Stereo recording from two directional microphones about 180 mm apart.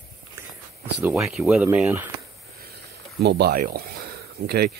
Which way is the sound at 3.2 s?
65° right (ahead or behind).